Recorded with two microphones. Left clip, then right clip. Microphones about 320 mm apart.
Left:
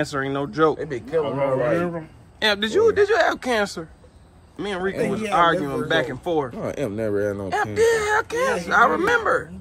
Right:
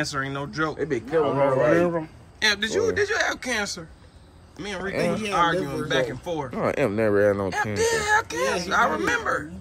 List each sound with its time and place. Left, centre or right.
0.0 s speech: centre
0.7 s speech: centre
2.4 s speech: centre
6.5 s speech: right
7.4 s speech: centre